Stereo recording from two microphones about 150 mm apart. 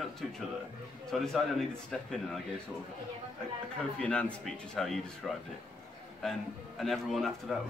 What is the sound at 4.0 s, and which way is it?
Speech, 5° left (ahead or behind).